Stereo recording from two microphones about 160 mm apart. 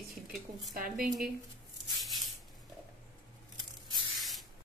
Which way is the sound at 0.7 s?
60° right (ahead or behind).